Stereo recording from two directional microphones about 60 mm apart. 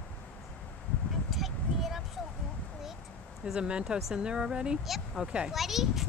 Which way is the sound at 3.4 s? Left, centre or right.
Centre.